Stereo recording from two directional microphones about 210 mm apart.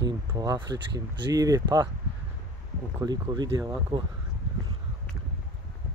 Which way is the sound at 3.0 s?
20° right (ahead or behind).